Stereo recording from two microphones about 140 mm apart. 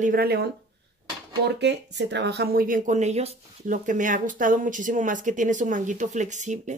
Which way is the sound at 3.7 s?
65° right (ahead or behind).